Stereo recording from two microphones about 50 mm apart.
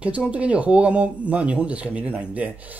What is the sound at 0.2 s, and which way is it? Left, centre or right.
Speech, right.